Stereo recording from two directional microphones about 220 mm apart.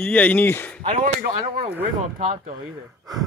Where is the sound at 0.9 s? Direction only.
30° right (ahead or behind).